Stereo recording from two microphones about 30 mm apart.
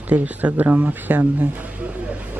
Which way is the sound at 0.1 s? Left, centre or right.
Right.